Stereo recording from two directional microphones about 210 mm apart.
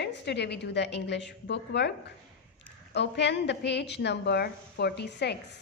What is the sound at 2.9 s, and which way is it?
A woman's voice, 55° left (ahead or behind).